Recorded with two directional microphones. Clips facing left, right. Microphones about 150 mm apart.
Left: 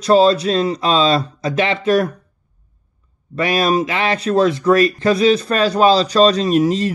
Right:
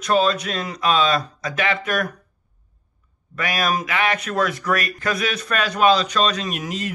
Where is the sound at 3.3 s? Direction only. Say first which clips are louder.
Left 7 dB; 30° left (ahead or behind).